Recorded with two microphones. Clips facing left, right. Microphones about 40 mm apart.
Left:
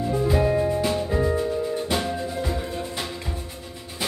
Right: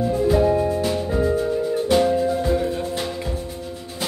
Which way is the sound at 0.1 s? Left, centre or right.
Centre.